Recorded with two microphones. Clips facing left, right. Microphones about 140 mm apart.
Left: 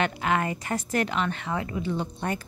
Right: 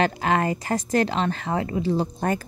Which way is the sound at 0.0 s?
35° right (ahead or behind).